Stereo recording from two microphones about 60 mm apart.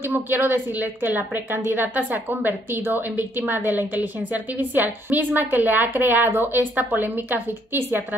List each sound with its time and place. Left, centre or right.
0.0 s a woman's voice: right